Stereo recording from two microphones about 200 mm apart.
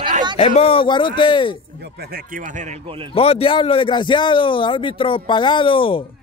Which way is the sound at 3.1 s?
30° left (ahead or behind).